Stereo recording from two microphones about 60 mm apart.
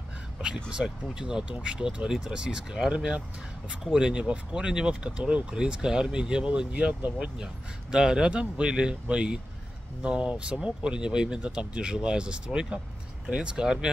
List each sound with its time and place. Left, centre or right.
0.7 s speech: centre
7.9 s speech: centre